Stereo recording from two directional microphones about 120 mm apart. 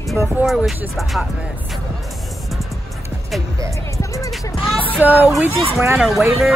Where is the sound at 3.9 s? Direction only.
25° left (ahead or behind).